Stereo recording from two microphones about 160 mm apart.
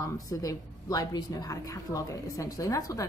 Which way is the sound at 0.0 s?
20° left (ahead or behind).